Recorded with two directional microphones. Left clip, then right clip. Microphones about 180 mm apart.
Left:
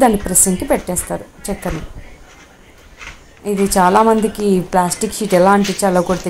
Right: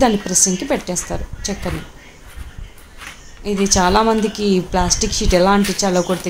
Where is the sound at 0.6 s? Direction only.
15° left (ahead or behind).